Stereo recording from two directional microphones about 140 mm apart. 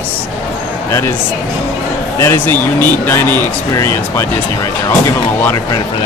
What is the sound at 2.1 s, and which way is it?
Speech, 15° left (ahead or behind).